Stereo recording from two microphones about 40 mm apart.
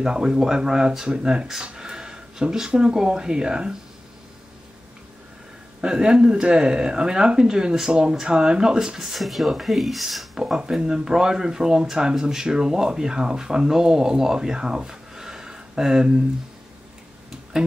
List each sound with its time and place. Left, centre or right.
0.0 s speech: centre
1.7 s a sound: centre
2.5 s speech: centre
5.8 s speech: centre
10.3 s speech: centre